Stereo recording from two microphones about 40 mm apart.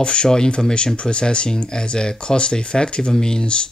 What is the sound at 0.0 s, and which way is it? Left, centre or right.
Speech, left.